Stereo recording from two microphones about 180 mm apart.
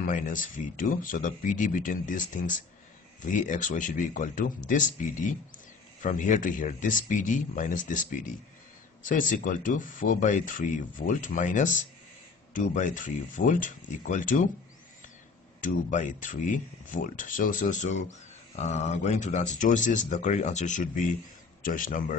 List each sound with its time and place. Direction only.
0.0 s speech: 45° left (ahead or behind)
15.6 s speech: 45° left (ahead or behind)